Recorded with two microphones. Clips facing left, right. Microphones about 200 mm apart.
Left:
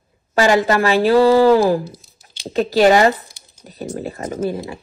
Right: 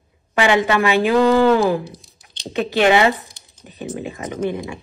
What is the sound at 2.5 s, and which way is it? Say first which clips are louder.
Speech: left 3 dB; 35° left (ahead or behind).